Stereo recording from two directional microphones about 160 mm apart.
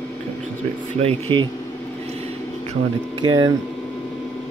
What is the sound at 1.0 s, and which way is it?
Speech, 30° right (ahead or behind).